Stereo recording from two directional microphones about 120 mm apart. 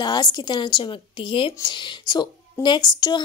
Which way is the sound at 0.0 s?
35° left (ahead or behind).